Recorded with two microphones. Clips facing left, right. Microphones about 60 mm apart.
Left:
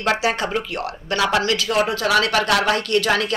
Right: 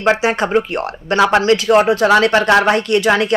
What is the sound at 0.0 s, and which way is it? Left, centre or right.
Speech, right.